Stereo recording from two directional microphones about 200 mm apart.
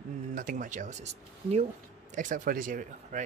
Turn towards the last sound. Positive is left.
turn(degrees=-40)  # may be behind; listen again after turning